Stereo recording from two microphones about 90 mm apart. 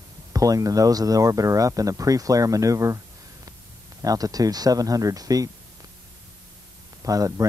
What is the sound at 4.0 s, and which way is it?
Speech, 40° right (ahead or behind).